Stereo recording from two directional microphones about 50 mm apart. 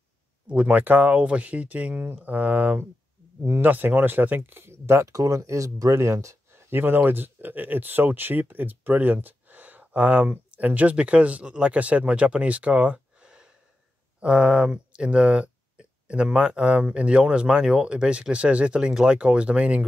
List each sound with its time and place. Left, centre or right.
0.5 s speech: right
1.2 s speech: right
6.7 s speech: right